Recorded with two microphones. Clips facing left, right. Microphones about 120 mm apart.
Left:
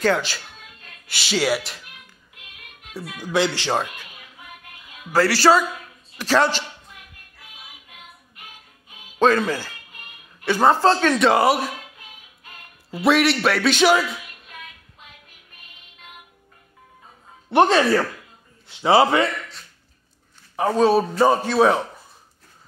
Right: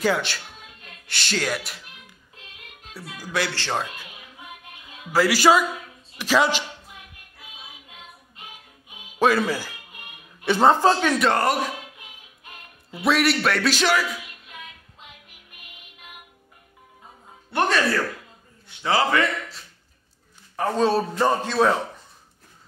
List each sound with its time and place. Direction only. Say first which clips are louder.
0.0 s a man's voice: left 2 dB; centre (ahead or behind)
3.2 s speech: left 5 dB; 20° left (ahead or behind)
4.0 s music: right 1 dB; 20° right (ahead or behind)
5.1 s speech: left 1 dB; 10° right (ahead or behind)
7.9 s music: right 1 dB; 20° right (ahead or behind)
9.5 s a sound: left 1 dB; 15° right (ahead or behind)
11.2 s a man's voice: left 6 dB; 5° left (ahead or behind)
13.0 s speech: left 3 dB; centre (ahead or behind)
14.5 s music: left 1 dB; 20° right (ahead or behind)
17.5 s a man's voice: left 6 dB; 25° left (ahead or behind)
20.5 s a man's voice: left 4 dB; 10° left (ahead or behind)